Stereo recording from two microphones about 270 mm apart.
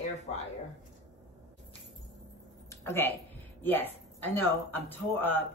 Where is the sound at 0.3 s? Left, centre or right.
Left.